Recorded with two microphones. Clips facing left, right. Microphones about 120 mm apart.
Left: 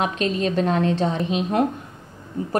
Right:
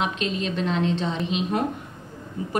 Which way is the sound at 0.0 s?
45° left (ahead or behind).